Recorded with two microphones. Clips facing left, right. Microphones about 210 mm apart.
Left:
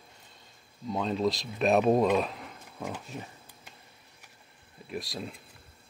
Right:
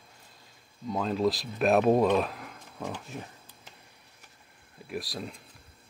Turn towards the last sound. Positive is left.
turn(degrees=0)  # may be behind; listen again after turning